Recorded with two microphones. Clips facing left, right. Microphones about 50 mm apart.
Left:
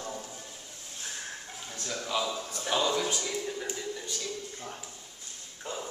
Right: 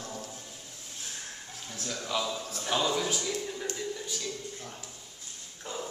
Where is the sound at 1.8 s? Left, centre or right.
Centre.